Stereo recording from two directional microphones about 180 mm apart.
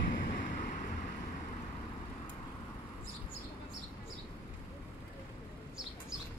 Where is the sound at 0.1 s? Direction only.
50° left (ahead or behind).